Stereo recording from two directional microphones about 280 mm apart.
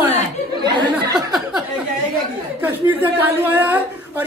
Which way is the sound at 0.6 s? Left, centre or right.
Centre.